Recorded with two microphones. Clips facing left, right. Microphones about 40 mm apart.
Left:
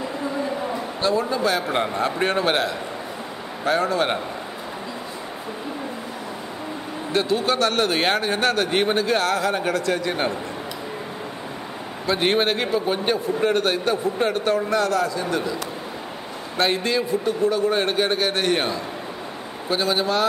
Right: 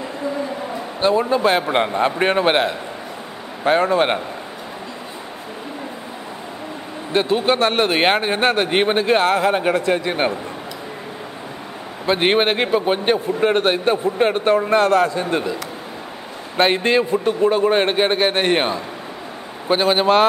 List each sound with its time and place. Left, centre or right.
1.0 s a man's voice: right
7.1 s a man's voice: right
12.1 s a man's voice: right
16.5 s a man's voice: right